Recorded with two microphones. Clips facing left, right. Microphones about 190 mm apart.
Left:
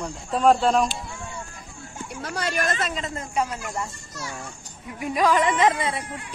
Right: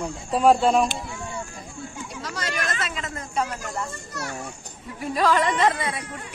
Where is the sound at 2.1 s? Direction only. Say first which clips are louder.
Left 5 dB; 55° left (ahead or behind).